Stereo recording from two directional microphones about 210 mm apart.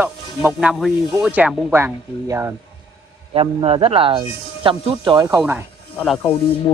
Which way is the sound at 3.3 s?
25° right (ahead or behind).